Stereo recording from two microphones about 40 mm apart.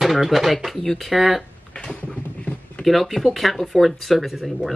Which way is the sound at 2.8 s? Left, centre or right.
Centre.